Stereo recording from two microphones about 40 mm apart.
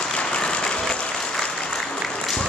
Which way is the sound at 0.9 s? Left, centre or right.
Left.